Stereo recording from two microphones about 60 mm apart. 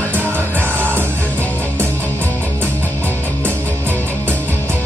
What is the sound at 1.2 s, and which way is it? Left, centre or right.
Music, left.